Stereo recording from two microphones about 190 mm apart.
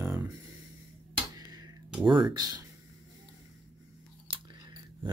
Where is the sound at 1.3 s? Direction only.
20° right (ahead or behind).